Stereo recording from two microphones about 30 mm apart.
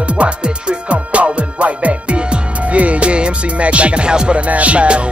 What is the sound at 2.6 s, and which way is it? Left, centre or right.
Music, right.